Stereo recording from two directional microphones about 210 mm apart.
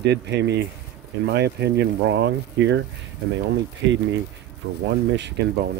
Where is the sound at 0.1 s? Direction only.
55° right (ahead or behind).